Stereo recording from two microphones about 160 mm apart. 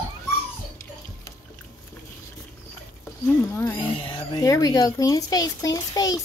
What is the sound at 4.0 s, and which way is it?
Speech, 30° left (ahead or behind).